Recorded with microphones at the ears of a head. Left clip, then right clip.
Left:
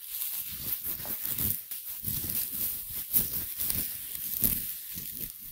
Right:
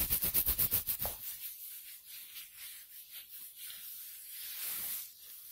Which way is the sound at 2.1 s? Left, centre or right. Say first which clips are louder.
Left 12 dB; left.